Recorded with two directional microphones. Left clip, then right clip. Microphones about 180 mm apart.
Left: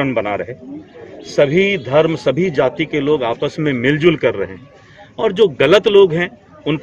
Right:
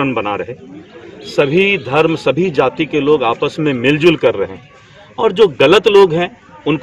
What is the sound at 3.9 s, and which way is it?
Speech, centre (ahead or behind).